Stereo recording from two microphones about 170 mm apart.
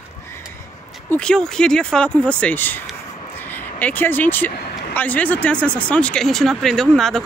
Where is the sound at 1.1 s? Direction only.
5° left (ahead or behind).